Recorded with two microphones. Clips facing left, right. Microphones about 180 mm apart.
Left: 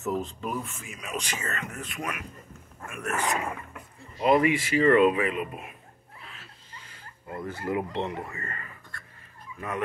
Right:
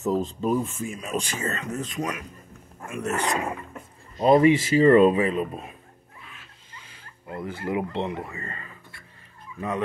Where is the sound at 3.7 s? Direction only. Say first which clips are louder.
Right 4 dB; 30° right (ahead or behind).